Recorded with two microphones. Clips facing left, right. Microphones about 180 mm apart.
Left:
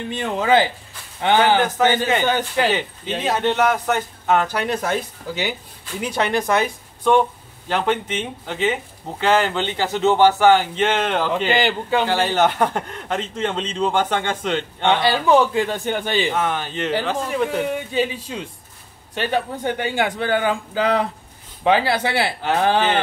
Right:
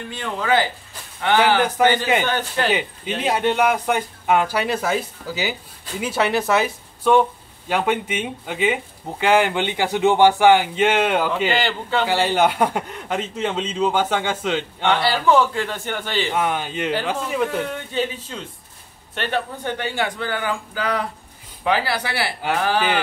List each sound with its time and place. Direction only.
0.1 s a man's voice: 20° left (ahead or behind)
1.6 s speech: 15° right (ahead or behind)
2.2 s a man's voice: 15° left (ahead or behind)
2.7 s speech: 10° right (ahead or behind)
11.5 s a man's voice: 15° left (ahead or behind)
12.1 s speech: 10° right (ahead or behind)
14.9 s a man's voice: 20° left (ahead or behind)
16.3 s speech: 10° right (ahead or behind)
17.5 s a man's voice: 10° left (ahead or behind)